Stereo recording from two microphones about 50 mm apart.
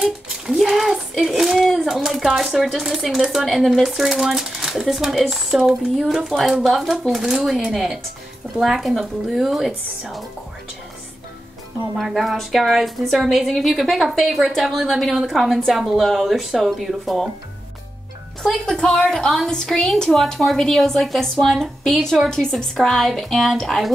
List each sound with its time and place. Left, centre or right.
0.0 s a sound: centre
2.5 s speech: centre
12.0 s speech: centre
18.4 s speech: centre
18.8 s a woman's voice: centre